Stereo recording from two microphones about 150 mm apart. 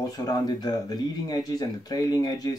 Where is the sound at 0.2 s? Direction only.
25° left (ahead or behind).